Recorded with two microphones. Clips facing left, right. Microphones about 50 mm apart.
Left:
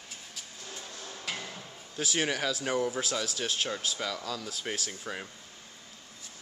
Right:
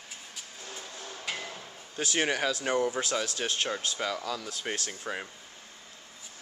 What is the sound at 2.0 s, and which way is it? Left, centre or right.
Speech, centre.